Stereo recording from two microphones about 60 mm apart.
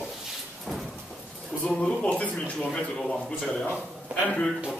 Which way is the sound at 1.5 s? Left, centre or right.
Centre.